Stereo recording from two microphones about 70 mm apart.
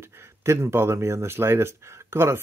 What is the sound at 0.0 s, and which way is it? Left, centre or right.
Speech, right.